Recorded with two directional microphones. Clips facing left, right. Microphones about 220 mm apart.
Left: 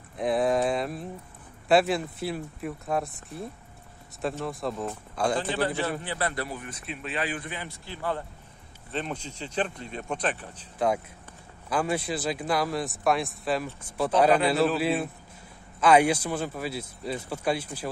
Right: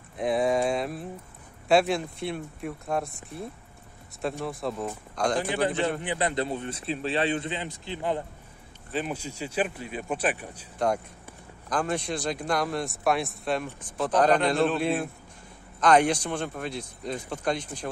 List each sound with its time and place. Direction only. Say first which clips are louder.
0.2 s speech: even; centre (ahead or behind)
4.5 s speech: even; centre (ahead or behind)
5.4 s a man's voice: right 2 dB; 15° right (ahead or behind)
8.9 s speech: right 2 dB; 10° right (ahead or behind)
11.7 s speech: left 1 dB; 5° left (ahead or behind)